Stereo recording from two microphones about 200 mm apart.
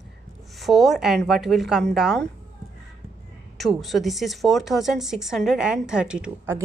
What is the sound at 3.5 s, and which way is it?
Speech, centre (ahead or behind).